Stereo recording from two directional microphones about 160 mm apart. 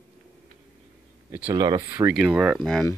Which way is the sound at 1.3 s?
10° right (ahead or behind).